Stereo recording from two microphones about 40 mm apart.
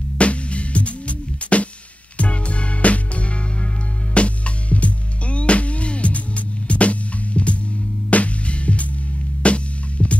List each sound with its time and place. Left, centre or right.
0.2 s music: left